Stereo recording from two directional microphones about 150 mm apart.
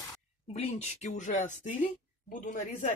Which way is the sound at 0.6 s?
50° left (ahead or behind).